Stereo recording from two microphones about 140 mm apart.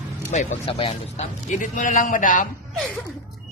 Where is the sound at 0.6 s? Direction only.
45° left (ahead or behind); by 2.5 s 70° left (ahead or behind).